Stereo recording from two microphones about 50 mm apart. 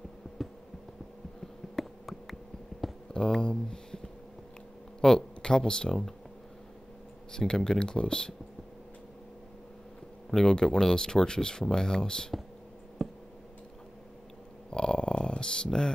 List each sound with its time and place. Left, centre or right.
0.4 s a sound: centre
1.8 s insect: centre
2.8 s a sound: centre
3.3 s speech: centre
5.0 s speech: centre
7.3 s speech: centre
10.3 s speech: centre
13.0 s tick: centre
14.7 s a sound: centre